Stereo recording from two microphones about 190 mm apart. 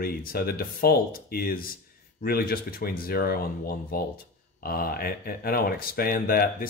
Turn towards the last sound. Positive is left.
turn(degrees=50)  # may be behind; listen again after turning